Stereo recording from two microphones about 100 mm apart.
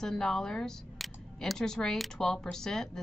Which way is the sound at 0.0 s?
5° left (ahead or behind).